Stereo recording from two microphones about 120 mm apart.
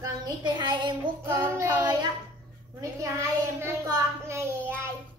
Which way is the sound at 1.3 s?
20° right (ahead or behind).